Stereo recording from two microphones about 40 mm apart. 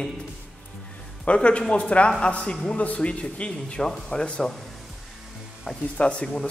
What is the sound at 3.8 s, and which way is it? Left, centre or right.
Speech, centre.